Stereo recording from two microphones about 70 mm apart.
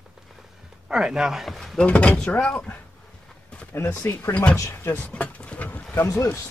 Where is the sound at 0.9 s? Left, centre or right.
Centre.